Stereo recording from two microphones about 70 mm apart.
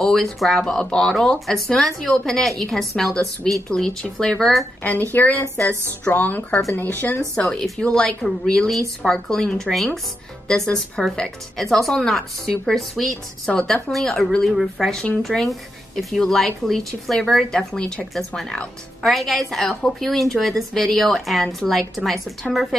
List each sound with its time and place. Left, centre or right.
0.0 s a woman's voice: centre
5.1 s speech: left
7.3 s a woman's voice: centre